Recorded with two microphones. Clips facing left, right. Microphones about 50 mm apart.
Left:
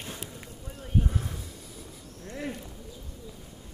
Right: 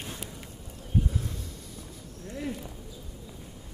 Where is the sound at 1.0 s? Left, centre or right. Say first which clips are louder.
Left 1 dB; left.